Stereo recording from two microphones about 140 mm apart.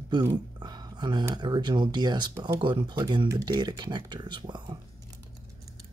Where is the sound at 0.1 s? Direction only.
30° right (ahead or behind).